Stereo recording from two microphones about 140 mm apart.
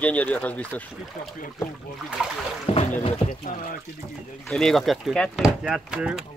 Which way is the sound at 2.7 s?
45° left (ahead or behind).